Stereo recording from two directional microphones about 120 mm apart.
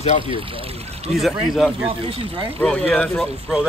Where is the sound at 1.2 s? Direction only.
Centre (ahead or behind).